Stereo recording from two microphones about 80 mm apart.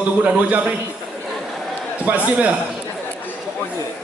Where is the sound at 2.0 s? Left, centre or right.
Centre.